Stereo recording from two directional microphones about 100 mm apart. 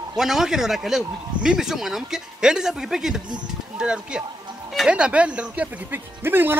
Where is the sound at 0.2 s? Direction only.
5° right (ahead or behind).